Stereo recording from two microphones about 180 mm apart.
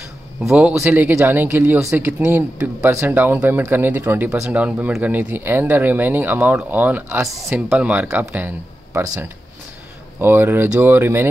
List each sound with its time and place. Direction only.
0.4 s speech: 5° right (ahead or behind)